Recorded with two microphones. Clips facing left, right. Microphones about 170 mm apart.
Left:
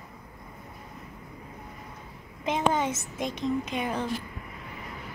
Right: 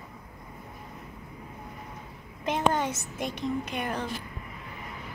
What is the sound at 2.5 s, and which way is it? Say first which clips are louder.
A woman's voice: even; 5° left (ahead or behind).